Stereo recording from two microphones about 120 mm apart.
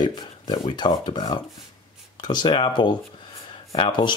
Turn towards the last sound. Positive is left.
turn(degrees=45)  # may be behind; listen again after turning